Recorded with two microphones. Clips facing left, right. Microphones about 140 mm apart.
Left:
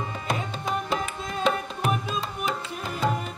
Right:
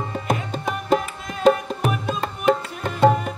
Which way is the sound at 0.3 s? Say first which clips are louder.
Right 3 dB; 45° right (ahead or behind).